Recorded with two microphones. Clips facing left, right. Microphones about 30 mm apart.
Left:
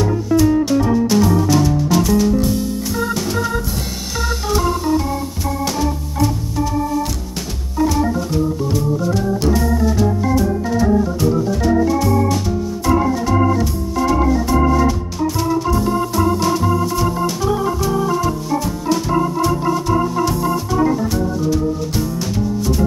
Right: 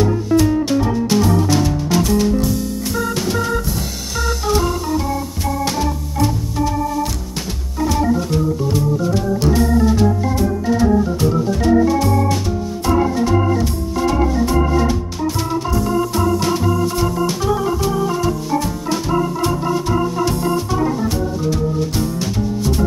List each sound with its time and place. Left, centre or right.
1.0 s music: centre
9.6 s organ: right
10.8 s organ: centre
16.3 s organ: centre